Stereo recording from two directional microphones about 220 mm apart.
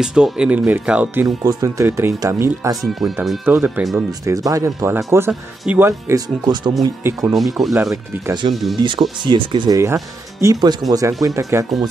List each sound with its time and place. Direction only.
0.0 s speech: 5° right (ahead or behind)
2.8 s speech: centre (ahead or behind)
7.3 s speech: centre (ahead or behind)
7.9 s speech: 15° right (ahead or behind)